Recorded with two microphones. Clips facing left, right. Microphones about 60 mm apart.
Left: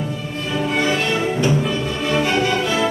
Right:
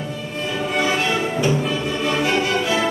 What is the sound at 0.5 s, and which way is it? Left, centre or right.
Music, centre.